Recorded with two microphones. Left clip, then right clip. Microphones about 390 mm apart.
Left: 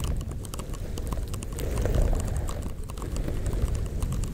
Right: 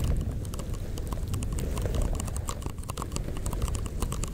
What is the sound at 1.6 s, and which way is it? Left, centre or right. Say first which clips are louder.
Clip-clop: left 5 dB; left.